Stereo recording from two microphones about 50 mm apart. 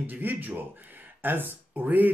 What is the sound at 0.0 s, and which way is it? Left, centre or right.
Speech, right.